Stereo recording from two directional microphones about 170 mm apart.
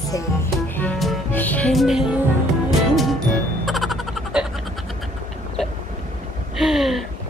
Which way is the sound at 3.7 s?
Centre (ahead or behind).